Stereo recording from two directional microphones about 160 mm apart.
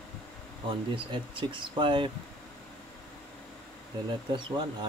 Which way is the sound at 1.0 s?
30° right (ahead or behind).